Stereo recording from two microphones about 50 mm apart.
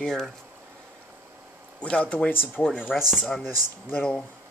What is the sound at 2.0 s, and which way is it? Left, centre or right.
Speech, left.